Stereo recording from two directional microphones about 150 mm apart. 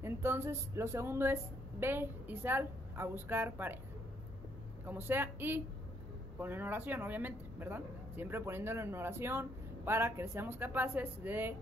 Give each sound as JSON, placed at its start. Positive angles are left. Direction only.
{"t": 0.0, "sound": "speech", "side_deg": -15}
{"t": 4.8, "sound": "speech", "side_deg": -15}